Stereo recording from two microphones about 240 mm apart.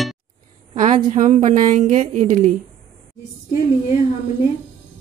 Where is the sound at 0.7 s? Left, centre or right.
Right.